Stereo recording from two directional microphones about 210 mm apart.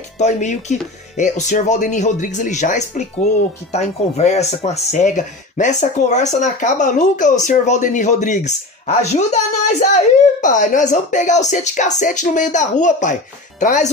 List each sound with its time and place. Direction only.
0.2 s speech: 35° left (ahead or behind)